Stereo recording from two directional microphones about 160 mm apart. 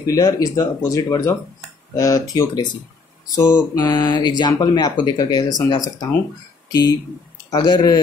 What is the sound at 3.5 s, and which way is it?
Speech, 20° left (ahead or behind).